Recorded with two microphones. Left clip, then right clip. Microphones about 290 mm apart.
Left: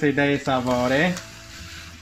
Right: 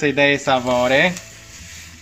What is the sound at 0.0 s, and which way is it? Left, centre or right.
Speech, right.